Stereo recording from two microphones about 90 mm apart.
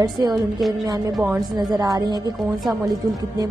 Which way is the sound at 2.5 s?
Centre (ahead or behind).